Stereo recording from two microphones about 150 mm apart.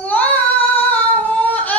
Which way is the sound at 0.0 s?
10° left (ahead or behind).